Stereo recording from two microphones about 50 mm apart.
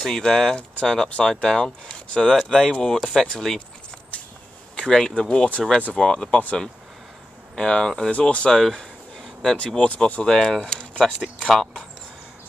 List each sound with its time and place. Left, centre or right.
0.0 s speech: centre
0.6 s speech: left
4.7 s speech: centre
7.5 s speech: centre
8.1 s speech: left
8.5 s a sound: centre
9.8 s speech: left
10.2 s speech: centre